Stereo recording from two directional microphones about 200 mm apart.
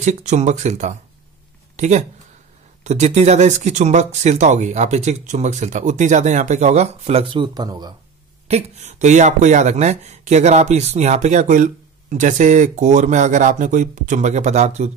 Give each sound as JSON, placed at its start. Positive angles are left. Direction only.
{"t": 0.0, "sound": "speech", "side_deg": -35}
{"t": 8.5, "sound": "speech", "side_deg": -35}